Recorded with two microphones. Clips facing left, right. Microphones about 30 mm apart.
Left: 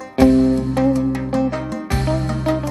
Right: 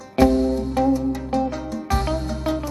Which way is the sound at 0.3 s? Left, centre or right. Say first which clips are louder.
Left 5 dB; left.